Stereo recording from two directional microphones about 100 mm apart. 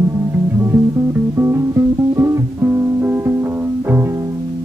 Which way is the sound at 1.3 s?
30° right (ahead or behind).